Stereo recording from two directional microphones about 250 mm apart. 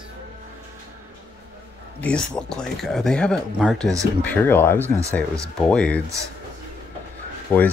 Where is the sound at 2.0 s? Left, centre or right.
Centre.